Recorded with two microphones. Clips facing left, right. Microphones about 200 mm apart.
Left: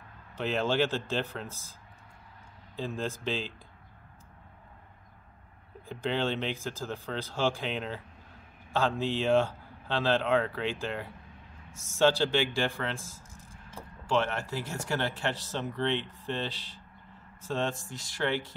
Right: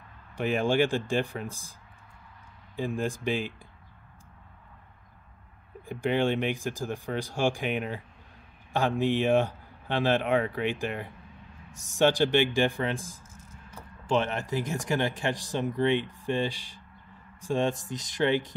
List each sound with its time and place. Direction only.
0.4 s speech: 15° right (ahead or behind)
5.9 s speech: 15° right (ahead or behind)